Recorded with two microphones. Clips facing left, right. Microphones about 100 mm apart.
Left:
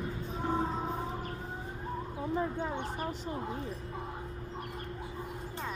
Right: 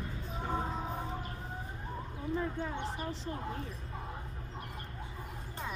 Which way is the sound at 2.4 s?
20° left (ahead or behind).